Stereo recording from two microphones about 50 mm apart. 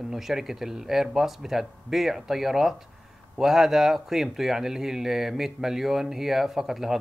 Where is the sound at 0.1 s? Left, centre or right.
Centre.